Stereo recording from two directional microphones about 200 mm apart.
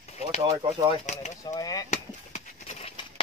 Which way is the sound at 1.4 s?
20° left (ahead or behind).